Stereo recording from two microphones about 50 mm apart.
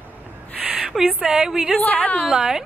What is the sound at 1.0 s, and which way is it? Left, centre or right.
Speech, centre.